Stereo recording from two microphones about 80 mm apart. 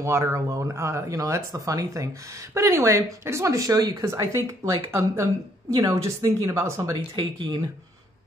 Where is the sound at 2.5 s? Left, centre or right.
Right.